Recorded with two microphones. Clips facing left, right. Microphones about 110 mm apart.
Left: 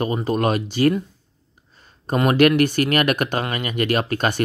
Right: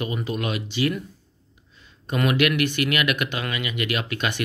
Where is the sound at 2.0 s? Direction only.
40° left (ahead or behind).